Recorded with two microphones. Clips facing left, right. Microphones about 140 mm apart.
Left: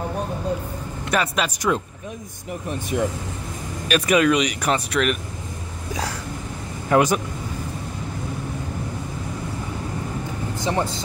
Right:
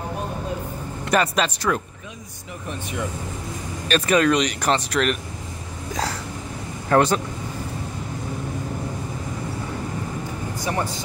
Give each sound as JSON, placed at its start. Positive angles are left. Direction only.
{"t": 1.1, "sound": "speech", "side_deg": 0}
{"t": 2.9, "sound": "speech", "side_deg": 50}
{"t": 3.9, "sound": "speech", "side_deg": 10}
{"t": 6.9, "sound": "speech", "side_deg": 10}
{"t": 10.6, "sound": "speech", "side_deg": 25}